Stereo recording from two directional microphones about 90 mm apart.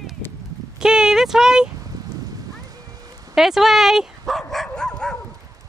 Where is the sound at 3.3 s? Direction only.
5° right (ahead or behind).